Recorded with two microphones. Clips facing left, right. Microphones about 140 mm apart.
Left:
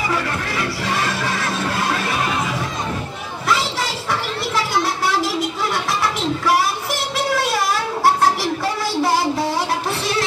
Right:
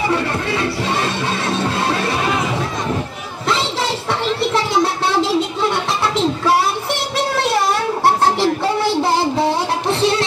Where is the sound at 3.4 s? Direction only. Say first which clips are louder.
Right 2 dB; 25° right (ahead or behind).